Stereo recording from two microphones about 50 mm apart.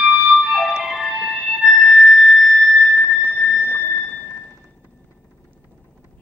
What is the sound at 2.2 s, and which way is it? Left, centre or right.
Theremin, centre.